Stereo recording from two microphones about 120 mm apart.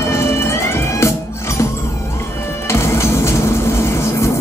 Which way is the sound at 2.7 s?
20° left (ahead or behind).